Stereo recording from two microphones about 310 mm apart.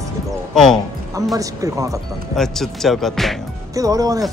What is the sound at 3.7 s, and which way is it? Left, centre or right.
Speech, centre.